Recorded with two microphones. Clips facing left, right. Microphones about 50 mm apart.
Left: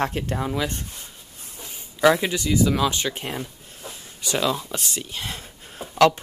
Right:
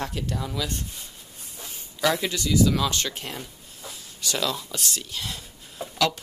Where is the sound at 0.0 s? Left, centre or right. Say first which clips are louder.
Left 5 dB; left.